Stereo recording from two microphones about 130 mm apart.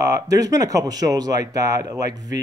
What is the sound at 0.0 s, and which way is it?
Speech, 25° right (ahead or behind).